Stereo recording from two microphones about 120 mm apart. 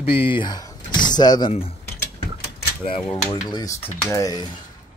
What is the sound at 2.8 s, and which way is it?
Speech, 50° left (ahead or behind).